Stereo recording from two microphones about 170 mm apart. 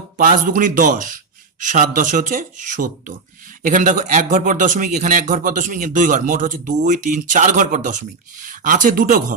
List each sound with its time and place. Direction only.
0.2 s speech: 50° right (ahead or behind)